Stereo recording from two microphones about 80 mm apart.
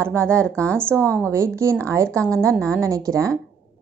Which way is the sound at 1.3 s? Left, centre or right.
Right.